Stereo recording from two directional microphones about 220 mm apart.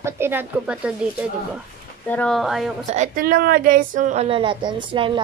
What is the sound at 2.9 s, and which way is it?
A woman's voice, 35° right (ahead or behind).